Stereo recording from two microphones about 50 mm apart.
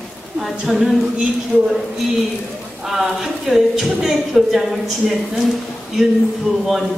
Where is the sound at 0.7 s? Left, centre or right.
Centre.